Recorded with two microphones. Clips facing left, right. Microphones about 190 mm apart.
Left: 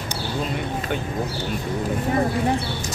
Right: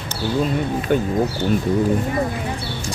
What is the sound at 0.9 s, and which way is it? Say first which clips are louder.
Speech: right 10 dB; 45° right (ahead or behind).